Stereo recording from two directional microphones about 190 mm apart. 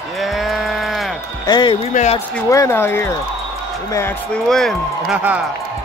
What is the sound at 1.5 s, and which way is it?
Music, 25° left (ahead or behind).